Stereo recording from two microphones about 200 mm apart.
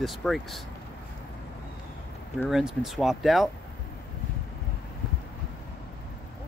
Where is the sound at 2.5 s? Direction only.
Centre (ahead or behind).